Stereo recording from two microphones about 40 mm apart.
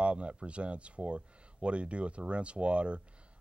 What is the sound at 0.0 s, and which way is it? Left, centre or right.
Speech, right.